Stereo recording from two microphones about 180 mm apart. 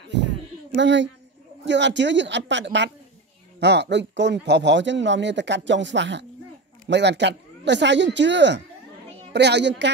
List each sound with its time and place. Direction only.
0.7 s speech: 85° right